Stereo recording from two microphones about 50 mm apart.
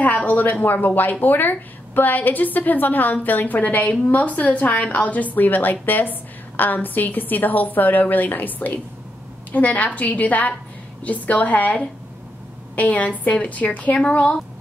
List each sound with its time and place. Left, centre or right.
0.0 s a woman's voice: left